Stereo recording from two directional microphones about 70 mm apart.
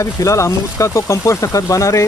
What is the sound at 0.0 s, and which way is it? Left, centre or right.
Speech, left.